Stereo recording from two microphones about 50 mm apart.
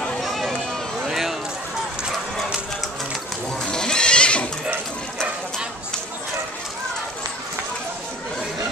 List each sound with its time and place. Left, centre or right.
0.2 s run: centre
3.6 s livestock: centre